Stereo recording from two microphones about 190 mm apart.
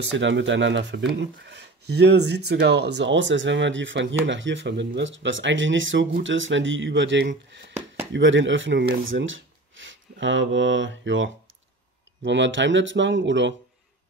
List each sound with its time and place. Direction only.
0.0 s speech: 75° right (ahead or behind)
9.0 s speech: 90° right; by 13.6 s 70° right (ahead or behind)